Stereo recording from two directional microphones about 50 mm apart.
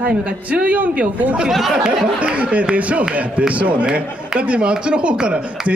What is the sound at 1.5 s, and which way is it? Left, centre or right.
Speech, centre.